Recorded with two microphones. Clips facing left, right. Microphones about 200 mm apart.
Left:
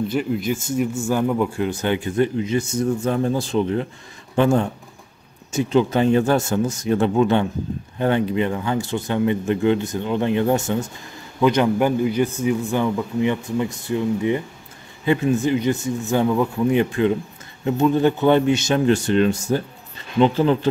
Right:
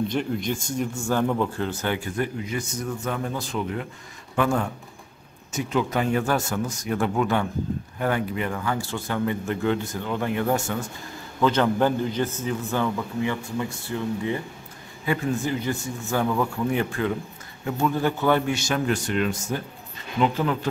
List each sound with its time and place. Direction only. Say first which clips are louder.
0.1 s a man's voice: left 4 dB; 5° left (ahead or behind); by 20.5 s 30° left (ahead or behind)